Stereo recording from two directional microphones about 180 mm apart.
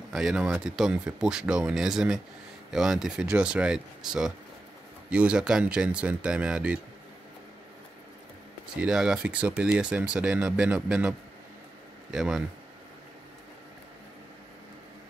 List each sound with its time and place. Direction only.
0.1 s speech: centre (ahead or behind)
8.7 s speech: 5° right (ahead or behind)